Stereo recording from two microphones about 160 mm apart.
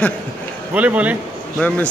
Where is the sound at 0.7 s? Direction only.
10° right (ahead or behind).